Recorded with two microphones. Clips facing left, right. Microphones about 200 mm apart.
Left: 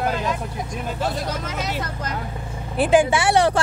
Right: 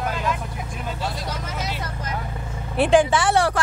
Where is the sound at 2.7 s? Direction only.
5° left (ahead or behind).